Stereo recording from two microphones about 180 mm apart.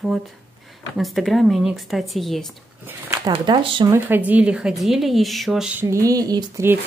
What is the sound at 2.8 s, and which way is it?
Speech, 15° right (ahead or behind).